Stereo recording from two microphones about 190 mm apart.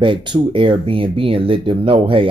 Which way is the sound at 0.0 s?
25° right (ahead or behind).